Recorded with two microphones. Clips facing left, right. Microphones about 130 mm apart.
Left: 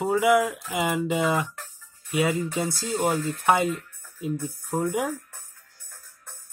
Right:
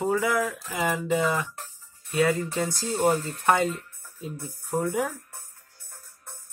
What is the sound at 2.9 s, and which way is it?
Speech, 40° right (ahead or behind).